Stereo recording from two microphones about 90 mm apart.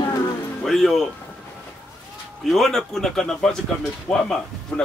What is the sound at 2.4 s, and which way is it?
Speech, centre (ahead or behind).